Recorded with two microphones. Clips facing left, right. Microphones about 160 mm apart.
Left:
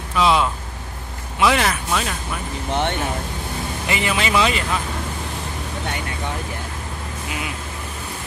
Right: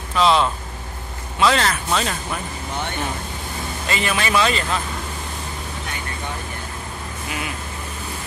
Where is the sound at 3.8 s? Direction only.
15° left (ahead or behind).